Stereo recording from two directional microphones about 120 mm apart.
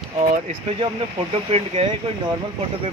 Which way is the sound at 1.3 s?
55° right (ahead or behind).